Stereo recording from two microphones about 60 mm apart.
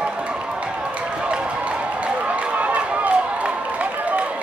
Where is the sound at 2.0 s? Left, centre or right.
Right.